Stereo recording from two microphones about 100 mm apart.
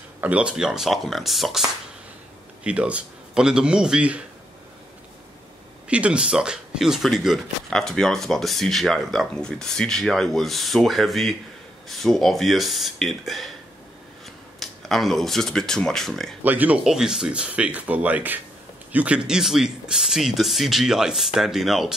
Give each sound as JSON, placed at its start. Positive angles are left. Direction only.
{"t": 0.2, "sound": "speech", "side_deg": -10}
{"t": 2.6, "sound": "speech", "side_deg": -10}
{"t": 5.9, "sound": "speech", "side_deg": -10}
{"t": 14.6, "sound": "speech", "side_deg": 0}
{"t": 16.4, "sound": "speech", "side_deg": -15}
{"t": 16.8, "sound": "speech", "side_deg": -5}